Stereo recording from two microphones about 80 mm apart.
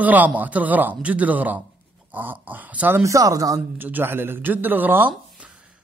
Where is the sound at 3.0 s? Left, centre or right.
Right.